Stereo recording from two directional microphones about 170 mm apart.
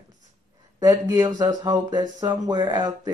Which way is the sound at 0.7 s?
20° right (ahead or behind).